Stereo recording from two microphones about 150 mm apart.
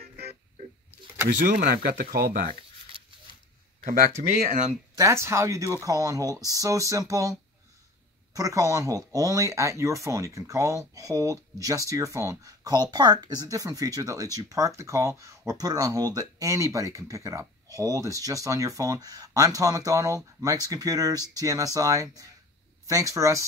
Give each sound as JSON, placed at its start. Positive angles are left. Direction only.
{"t": 1.4, "sound": "speech", "side_deg": -65}
{"t": 3.8, "sound": "speech", "side_deg": -65}
{"t": 4.9, "sound": "speech", "side_deg": -20}